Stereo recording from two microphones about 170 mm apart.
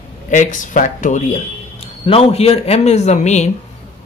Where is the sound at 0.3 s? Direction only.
45° left (ahead or behind).